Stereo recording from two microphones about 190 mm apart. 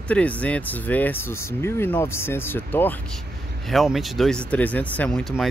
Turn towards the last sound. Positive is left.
turn(degrees=0)  # may be behind; listen again after turning